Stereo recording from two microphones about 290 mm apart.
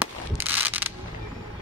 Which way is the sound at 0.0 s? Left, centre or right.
Centre.